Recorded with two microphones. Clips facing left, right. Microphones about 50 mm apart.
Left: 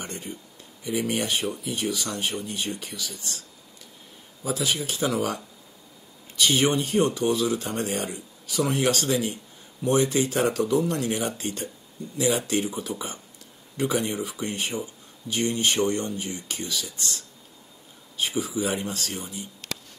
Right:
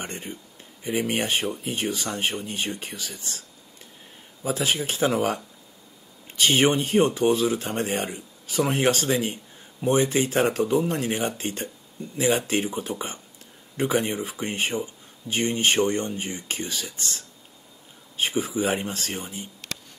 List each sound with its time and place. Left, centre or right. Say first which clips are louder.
0.0 s speech: right 1 dB; right
4.4 s a man's voice: right 2 dB; right
10.6 s speech: right 1 dB; right
18.1 s speech: right 2 dB; right